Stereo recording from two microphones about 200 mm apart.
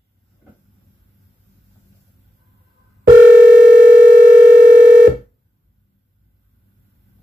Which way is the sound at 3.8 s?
40° right (ahead or behind).